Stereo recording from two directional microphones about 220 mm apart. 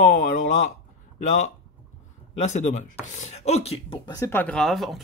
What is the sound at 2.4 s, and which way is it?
Speech, 30° left (ahead or behind).